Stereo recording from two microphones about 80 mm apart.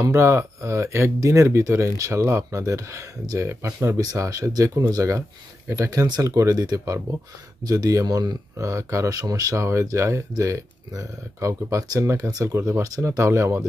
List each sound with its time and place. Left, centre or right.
0.0 s speech: right
4.0 s speech: right
5.9 s speech: right
8.6 s speech: right